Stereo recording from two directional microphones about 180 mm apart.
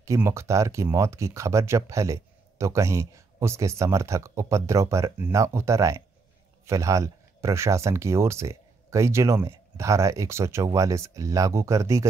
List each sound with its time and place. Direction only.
0.0 s speech: 15° right (ahead or behind)